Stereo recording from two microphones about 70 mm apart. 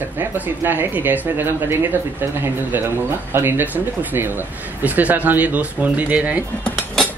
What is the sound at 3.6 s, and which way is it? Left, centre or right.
Speech, right.